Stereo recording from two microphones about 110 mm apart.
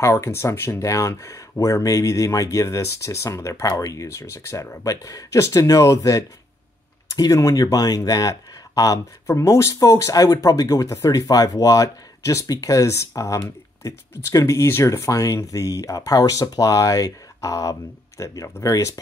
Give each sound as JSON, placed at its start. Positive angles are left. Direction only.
{"t": 0.0, "sound": "speech", "side_deg": 25}